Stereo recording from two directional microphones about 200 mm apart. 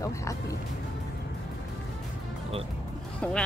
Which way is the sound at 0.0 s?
15° left (ahead or behind).